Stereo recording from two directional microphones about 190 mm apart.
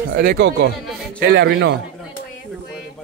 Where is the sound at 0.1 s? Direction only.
65° right (ahead or behind).